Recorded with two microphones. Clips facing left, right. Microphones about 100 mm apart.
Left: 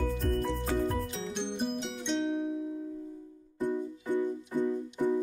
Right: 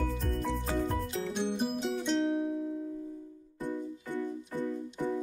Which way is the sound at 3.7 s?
20° left (ahead or behind).